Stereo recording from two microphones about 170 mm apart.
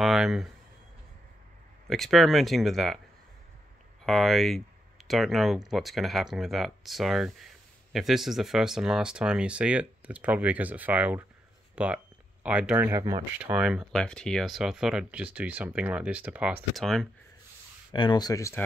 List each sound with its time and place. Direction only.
0.0 s speech: centre (ahead or behind)
1.9 s speech: centre (ahead or behind)
4.0 s speech: centre (ahead or behind); by 13.2 s 15° right (ahead or behind)
13.4 s speech: 5° right (ahead or behind)
17.9 s speech: 25° left (ahead or behind)